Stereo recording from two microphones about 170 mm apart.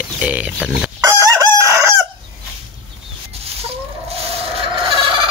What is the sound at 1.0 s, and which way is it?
Chicken, 20° right (ahead or behind).